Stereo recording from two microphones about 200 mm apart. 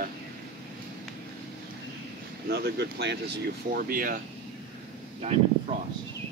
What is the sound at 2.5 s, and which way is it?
Speech, 55° right (ahead or behind).